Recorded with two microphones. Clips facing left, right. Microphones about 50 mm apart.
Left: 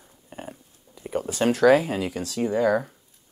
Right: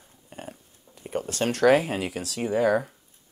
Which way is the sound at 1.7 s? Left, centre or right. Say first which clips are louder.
Even; centre.